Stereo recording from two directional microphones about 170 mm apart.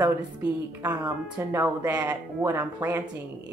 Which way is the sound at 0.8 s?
20° right (ahead or behind).